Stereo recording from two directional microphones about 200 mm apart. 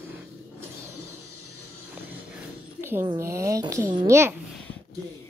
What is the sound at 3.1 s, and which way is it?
A woman's voice, 15° right (ahead or behind).